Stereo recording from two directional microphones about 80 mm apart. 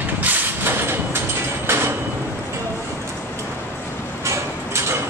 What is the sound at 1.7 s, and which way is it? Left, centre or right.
Sliding door, right.